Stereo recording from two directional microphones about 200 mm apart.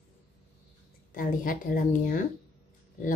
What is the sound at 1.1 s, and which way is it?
Speech, 45° left (ahead or behind).